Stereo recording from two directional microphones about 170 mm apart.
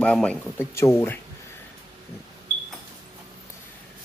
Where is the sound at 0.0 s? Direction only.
5° left (ahead or behind).